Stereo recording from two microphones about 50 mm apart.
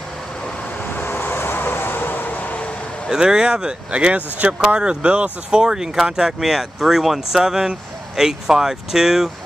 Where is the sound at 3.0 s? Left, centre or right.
Centre.